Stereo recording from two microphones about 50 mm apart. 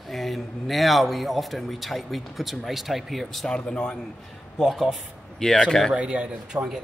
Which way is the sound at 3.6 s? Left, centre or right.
Centre.